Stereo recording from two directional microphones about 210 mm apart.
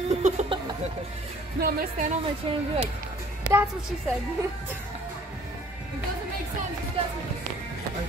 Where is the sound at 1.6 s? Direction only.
40° right (ahead or behind).